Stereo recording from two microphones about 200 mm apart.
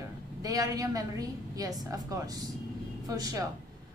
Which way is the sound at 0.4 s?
20° right (ahead or behind).